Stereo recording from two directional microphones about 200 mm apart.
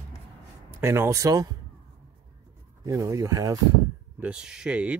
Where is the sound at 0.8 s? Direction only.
15° right (ahead or behind).